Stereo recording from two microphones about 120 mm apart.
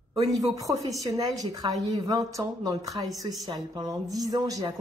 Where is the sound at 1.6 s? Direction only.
40° right (ahead or behind).